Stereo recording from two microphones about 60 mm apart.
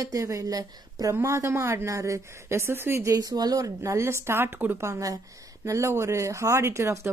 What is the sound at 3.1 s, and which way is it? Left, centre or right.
A woman's voice, right.